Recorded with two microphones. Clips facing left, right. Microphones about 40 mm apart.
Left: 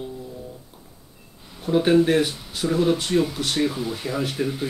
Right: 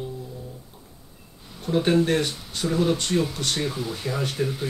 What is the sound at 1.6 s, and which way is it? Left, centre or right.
Speech, centre.